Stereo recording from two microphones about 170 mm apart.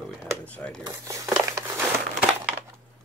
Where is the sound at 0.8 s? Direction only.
20° right (ahead or behind).